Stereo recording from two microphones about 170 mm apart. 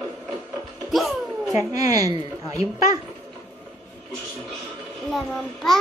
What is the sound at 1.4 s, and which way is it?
A woman's voice, 20° right (ahead or behind).